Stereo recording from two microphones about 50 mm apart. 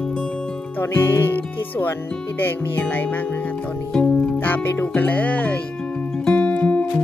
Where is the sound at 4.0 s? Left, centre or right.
Left.